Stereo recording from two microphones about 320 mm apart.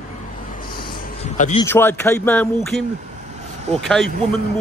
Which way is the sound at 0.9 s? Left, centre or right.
Centre.